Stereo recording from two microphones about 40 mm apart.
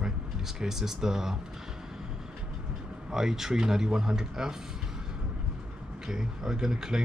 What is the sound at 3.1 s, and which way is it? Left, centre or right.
Speech, centre.